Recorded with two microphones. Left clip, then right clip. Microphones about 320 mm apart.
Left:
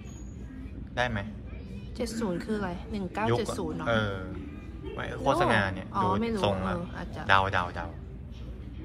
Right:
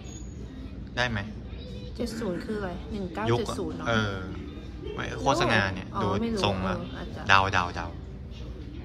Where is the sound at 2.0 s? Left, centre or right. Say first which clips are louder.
Even; left.